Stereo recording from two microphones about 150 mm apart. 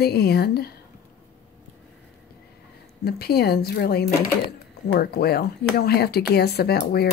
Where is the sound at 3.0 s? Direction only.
90° left.